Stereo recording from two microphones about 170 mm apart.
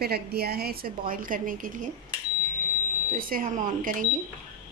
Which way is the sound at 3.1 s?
55° right (ahead or behind).